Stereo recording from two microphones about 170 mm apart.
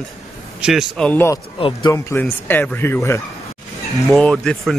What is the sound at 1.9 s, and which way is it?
Speech, 10° left (ahead or behind).